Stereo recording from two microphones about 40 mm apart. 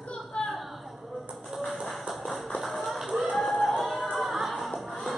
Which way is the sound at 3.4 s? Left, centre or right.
Centre.